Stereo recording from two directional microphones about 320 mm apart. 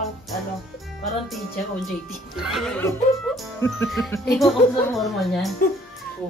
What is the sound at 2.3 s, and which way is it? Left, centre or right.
Speech, centre.